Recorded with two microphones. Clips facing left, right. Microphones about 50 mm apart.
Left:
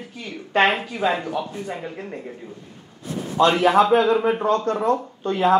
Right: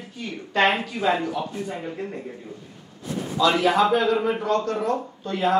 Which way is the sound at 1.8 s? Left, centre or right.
Centre.